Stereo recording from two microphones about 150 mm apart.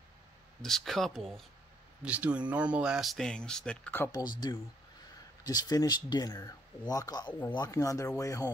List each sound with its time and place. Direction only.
0.6 s speech: 5° left (ahead or behind)
2.0 s speech: 10° right (ahead or behind); by 4.2 s 15° left (ahead or behind)
5.4 s speech: 25° left (ahead or behind)